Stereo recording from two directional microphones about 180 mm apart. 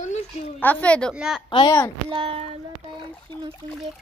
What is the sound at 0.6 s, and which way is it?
Speech, 10° left (ahead or behind).